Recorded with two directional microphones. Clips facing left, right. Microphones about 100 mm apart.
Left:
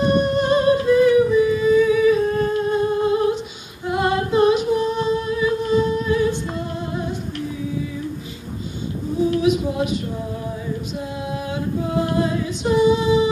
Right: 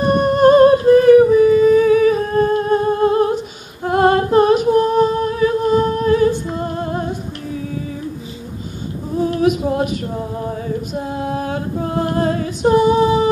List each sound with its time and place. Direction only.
0.0 s humming: 50° right (ahead or behind)
6.6 s music: 50° right (ahead or behind)
9.3 s female singing: 50° right (ahead or behind)
11.0 s female singing: 45° right (ahead or behind)